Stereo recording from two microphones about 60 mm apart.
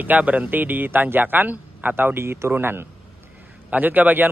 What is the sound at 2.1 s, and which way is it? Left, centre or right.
Speech, right.